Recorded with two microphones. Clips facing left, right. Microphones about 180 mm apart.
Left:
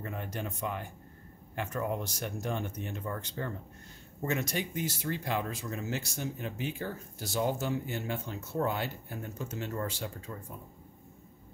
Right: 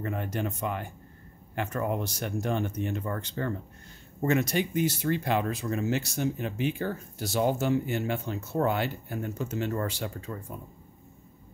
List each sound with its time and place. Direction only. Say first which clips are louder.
0.0 s speech: right 6 dB; 70° right (ahead or behind)